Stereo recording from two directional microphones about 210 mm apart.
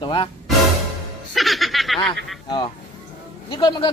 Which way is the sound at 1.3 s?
Centre (ahead or behind).